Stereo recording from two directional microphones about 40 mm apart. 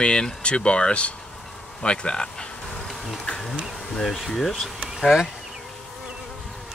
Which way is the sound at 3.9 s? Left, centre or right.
Centre.